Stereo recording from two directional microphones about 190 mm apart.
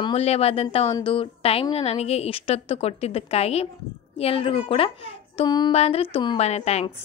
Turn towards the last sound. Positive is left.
turn(degrees=35)  # may be behind; listen again after turning